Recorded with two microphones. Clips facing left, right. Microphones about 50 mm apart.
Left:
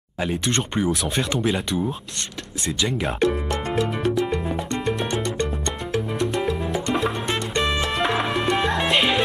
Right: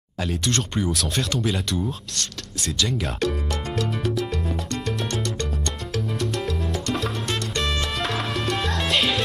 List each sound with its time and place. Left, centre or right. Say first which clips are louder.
0.2 s speech: left 2 dB; centre
4.5 s salsa music: left 3 dB; centre
5.9 s music: left 3 dB; centre